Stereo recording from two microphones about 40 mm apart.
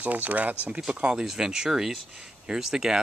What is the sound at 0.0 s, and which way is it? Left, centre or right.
Speech, right.